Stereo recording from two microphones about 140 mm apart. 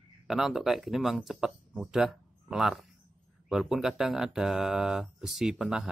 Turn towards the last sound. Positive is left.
turn(degrees=-5)  # may be behind; listen again after turning